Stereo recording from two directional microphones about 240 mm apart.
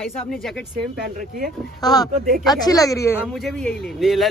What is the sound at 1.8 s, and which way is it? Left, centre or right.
Speech, centre.